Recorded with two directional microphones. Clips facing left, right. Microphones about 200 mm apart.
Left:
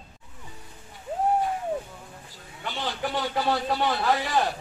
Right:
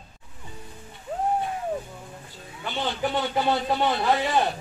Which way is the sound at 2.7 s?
25° right (ahead or behind).